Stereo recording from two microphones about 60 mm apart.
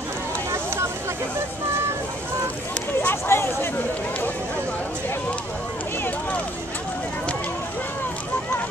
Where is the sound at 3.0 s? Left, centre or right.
Left.